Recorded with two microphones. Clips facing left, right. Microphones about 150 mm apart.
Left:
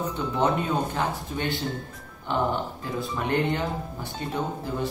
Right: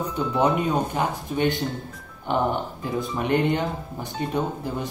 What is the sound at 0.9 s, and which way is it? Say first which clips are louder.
Speech: right 3 dB; 15° right (ahead or behind).